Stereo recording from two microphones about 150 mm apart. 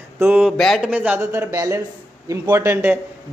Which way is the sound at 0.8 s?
10° right (ahead or behind).